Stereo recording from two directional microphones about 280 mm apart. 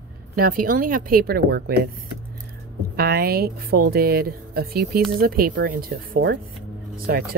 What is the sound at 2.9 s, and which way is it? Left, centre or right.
Speech, right.